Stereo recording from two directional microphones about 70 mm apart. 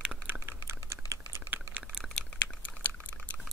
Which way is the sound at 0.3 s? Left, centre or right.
Right.